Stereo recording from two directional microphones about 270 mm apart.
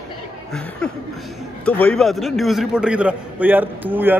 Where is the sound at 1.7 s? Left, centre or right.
Centre.